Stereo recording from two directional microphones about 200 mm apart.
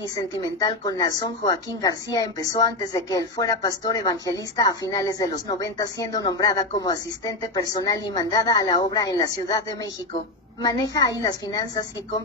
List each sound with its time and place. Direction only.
0.1 s a woman's voice: 20° left (ahead or behind)